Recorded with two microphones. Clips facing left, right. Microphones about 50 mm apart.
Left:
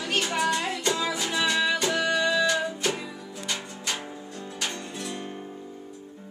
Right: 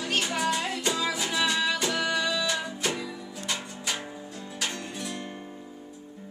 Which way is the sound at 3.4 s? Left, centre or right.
Centre.